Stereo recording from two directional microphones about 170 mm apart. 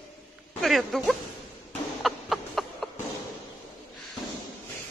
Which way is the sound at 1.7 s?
Centre (ahead or behind).